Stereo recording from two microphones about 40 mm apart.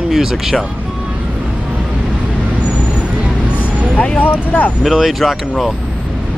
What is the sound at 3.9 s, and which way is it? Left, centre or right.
Speech, left.